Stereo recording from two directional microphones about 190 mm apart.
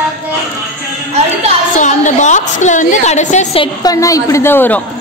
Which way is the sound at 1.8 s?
40° left (ahead or behind).